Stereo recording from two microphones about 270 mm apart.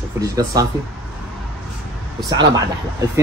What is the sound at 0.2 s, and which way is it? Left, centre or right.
Speech, centre.